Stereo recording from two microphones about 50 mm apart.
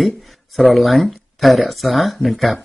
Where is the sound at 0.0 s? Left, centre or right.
Centre.